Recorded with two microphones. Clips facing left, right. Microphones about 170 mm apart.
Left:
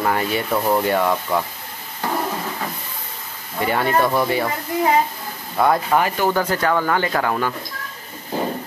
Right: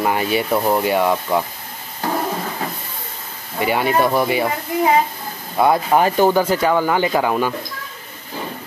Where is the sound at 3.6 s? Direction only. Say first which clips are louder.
Right 1 dB; 10° right (ahead or behind).